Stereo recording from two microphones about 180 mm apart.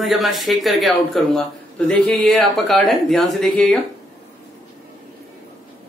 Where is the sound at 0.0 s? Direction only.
Centre (ahead or behind).